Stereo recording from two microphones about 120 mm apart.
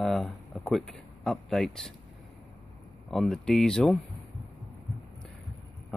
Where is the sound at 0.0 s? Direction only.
Centre (ahead or behind).